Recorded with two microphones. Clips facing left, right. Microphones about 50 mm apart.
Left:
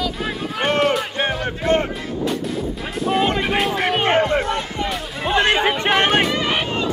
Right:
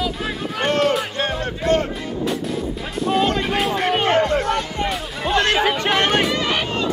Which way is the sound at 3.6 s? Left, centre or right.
Centre.